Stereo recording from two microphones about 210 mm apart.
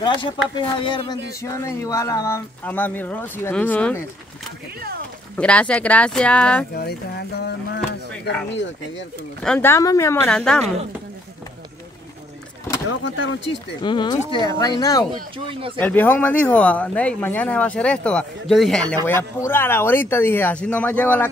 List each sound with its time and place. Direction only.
0.0 s speech: 25° left (ahead or behind)
5.4 s speech: 5° left (ahead or behind)
6.7 s speech: 50° left (ahead or behind)
9.4 s speech: 5° left (ahead or behind)
10.2 s speech: 5° left (ahead or behind)
13.0 s speech: 60° left (ahead or behind)
13.8 s speech: 20° left (ahead or behind)
15.3 s speech: 25° right (ahead or behind)
15.8 s speech: 10° left (ahead or behind)